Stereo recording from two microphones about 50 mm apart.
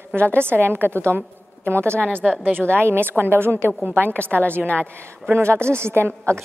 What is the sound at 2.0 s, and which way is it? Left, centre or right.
Speech, left.